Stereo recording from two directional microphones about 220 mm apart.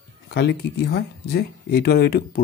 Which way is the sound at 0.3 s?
50° left (ahead or behind).